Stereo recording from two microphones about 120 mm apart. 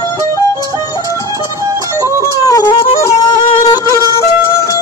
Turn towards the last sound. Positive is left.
turn(degrees=25)  # may be behind; listen again after turning